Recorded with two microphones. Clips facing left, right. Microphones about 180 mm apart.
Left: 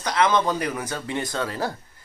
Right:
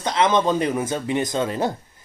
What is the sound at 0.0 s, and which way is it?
Speech, 25° right (ahead or behind).